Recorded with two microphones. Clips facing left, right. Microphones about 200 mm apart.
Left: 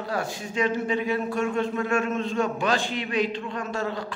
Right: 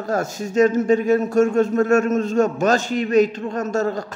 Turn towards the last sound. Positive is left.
turn(degrees=-45)  # may be behind; listen again after turning